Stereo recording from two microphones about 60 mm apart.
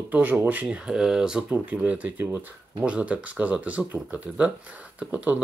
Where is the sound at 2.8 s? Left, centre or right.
Right.